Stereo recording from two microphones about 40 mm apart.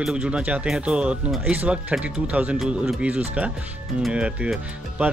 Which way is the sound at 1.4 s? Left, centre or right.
Right.